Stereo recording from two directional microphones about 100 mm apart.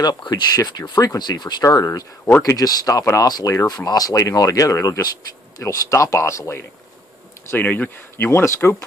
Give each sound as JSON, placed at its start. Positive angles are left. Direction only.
{"t": 0.0, "sound": "speech", "side_deg": 45}
{"t": 7.5, "sound": "speech", "side_deg": 15}